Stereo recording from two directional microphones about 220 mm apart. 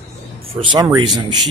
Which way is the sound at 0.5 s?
20° right (ahead or behind).